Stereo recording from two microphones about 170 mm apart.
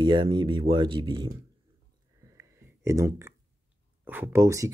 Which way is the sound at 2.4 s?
15° right (ahead or behind).